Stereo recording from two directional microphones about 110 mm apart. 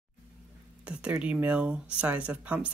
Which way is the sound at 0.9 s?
10° right (ahead or behind).